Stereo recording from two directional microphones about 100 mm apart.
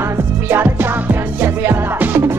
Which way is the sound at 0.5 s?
20° right (ahead or behind).